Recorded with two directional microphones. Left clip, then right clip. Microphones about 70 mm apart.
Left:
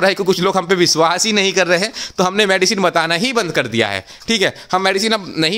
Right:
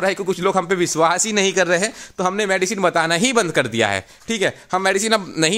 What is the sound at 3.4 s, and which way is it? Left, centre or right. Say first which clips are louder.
Speech: left 1 dB; right.